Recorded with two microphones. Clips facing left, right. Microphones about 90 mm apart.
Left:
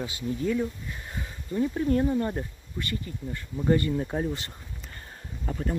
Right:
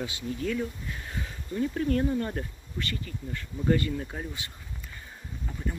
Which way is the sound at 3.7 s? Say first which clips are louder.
Left 3 dB; 25° left (ahead or behind).